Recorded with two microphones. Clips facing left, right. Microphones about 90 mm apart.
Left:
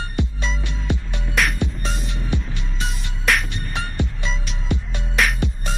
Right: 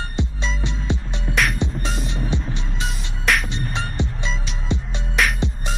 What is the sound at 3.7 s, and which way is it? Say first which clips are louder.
Music: left 3 dB; 20° right (ahead or behind).